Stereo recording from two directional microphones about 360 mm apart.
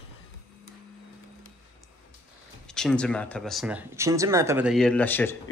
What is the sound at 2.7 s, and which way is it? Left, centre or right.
Speech, centre.